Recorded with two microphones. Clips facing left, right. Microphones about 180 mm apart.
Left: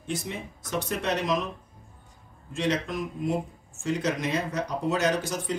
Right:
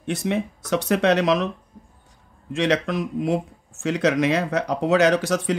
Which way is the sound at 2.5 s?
80° right.